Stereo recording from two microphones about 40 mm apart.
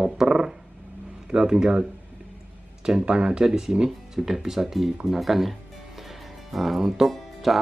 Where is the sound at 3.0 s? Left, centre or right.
Right.